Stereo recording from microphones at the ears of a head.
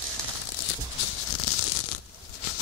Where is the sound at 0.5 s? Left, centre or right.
Left.